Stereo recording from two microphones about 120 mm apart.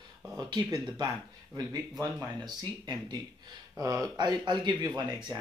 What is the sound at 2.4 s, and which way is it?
Speech, 35° right (ahead or behind).